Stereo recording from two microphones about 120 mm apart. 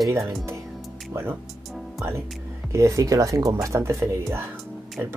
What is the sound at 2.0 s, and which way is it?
Music, 25° right (ahead or behind).